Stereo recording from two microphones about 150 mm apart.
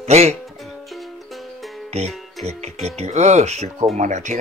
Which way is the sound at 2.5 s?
45° right (ahead or behind).